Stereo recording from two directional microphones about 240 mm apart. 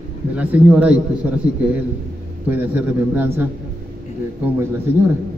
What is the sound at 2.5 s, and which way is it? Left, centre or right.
Speech, centre.